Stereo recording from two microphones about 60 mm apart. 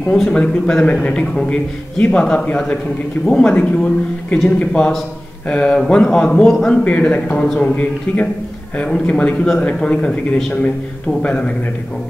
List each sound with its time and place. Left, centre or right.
0.0 s a man's voice: centre
7.7 s a man's voice: left